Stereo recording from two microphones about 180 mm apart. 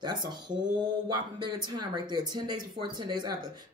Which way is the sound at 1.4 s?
25° right (ahead or behind).